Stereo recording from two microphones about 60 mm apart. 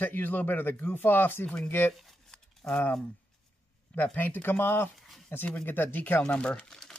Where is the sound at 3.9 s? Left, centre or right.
Left.